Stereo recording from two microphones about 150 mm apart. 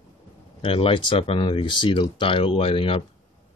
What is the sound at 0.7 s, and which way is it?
Speech, 35° left (ahead or behind).